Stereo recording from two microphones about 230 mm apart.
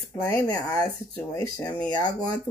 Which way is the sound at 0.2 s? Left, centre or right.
Centre.